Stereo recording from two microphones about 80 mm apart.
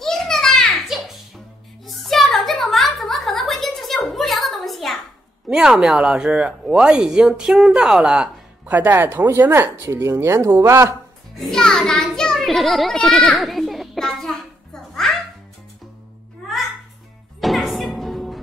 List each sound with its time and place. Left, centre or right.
0.0 s a sound: centre
0.8 s music: centre
1.9 s a sound: centre
5.5 s speech: centre
8.6 s a woman's voice: right
11.3 s children playing: centre
17.4 s music: centre